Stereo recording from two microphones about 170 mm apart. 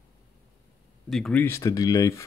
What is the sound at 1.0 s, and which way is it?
Speech, centre (ahead or behind).